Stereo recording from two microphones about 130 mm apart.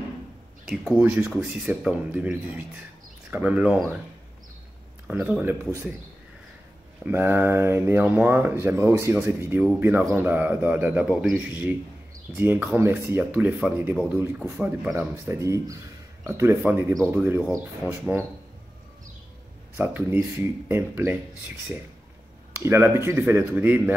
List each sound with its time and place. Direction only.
0.7 s speech: centre (ahead or behind)
1.0 s speech: 10° right (ahead or behind)
5.1 s speech: 20° right (ahead or behind)
7.1 s speech: 15° right (ahead or behind)
15.0 s speech: 20° right (ahead or behind)
19.8 s speech: 15° right (ahead or behind)
22.6 s speech: 20° right (ahead or behind)